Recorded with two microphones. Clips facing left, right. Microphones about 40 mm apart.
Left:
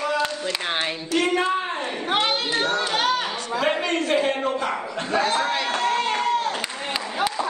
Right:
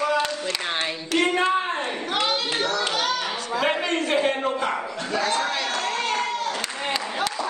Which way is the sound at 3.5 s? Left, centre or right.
Centre.